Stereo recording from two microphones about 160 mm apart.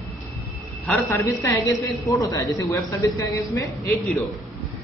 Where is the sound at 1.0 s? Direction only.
15° left (ahead or behind).